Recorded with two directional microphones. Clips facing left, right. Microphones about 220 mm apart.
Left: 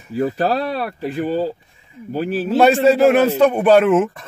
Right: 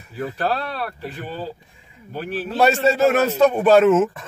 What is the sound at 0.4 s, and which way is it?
Speech, 40° left (ahead or behind).